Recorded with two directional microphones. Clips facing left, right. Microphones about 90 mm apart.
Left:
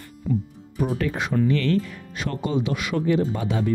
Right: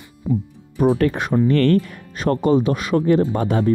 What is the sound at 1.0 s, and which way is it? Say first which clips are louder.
Speech: right 5 dB; 55° right (ahead or behind).